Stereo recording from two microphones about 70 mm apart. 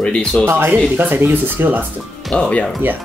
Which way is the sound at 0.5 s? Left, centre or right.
Right.